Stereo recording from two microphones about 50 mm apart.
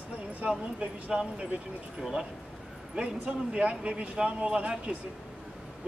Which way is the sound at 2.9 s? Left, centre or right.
Right.